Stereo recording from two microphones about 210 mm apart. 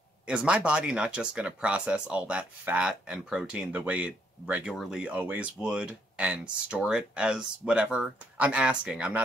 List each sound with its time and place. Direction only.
0.3 s speech: 5° right (ahead or behind)